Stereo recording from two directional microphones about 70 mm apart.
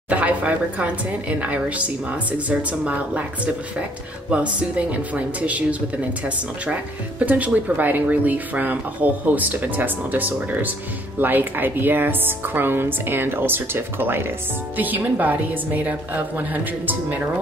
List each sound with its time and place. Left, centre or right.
0.1 s speech: right
4.3 s a woman's voice: centre